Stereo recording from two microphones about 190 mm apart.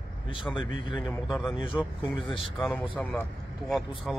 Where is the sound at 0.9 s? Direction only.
Centre (ahead or behind).